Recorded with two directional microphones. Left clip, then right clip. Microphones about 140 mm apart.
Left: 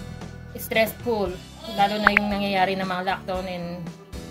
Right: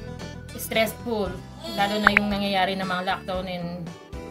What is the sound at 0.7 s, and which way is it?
A woman's voice, 25° left (ahead or behind).